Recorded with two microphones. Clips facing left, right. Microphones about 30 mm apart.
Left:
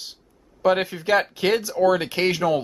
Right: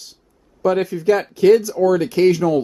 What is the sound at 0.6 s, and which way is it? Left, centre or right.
Speech, left.